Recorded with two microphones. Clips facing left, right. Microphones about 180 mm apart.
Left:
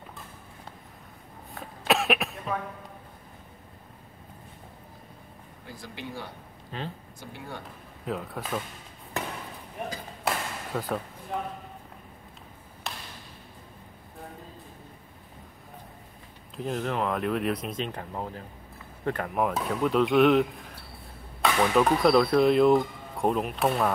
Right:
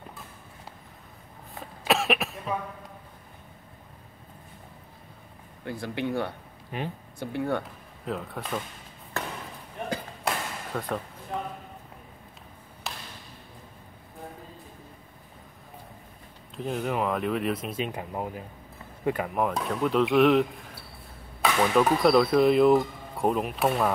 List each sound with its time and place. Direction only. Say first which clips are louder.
1.5 s cough: even; centre (ahead or behind)
5.7 s speech: right 10 dB; 60° right (ahead or behind)
6.7 s speech: right 3 dB; 15° right (ahead or behind)
7.2 s speech: right 15 dB; 60° right (ahead or behind)
8.0 s speech: even; centre (ahead or behind)
9.8 s a sound: right 1 dB; 5° left (ahead or behind)
11.3 s speech: even; centre (ahead or behind)
12.9 s a sound: even; centre (ahead or behind)
16.5 s speech: right 1 dB; centre (ahead or behind)